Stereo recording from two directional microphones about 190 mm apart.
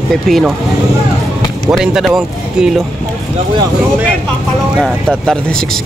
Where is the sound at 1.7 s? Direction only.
Centre (ahead or behind).